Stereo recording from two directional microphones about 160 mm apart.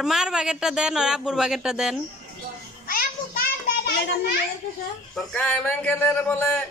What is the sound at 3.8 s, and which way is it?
Children playing, 65° left (ahead or behind).